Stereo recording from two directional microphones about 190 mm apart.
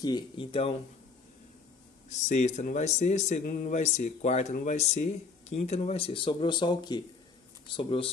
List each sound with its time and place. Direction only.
0.0 s speech: 25° left (ahead or behind)
2.0 s speech: 40° left (ahead or behind)